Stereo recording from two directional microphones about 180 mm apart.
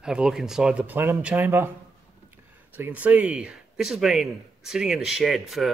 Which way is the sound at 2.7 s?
10° right (ahead or behind).